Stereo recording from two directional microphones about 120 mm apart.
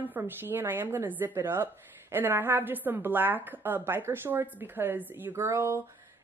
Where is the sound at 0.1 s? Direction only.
15° right (ahead or behind).